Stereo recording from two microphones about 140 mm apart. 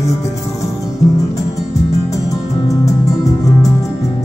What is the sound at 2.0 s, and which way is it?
Music, 25° left (ahead or behind).